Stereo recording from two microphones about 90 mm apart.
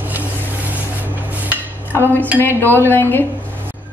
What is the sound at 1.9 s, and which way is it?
Dishes, 20° left (ahead or behind).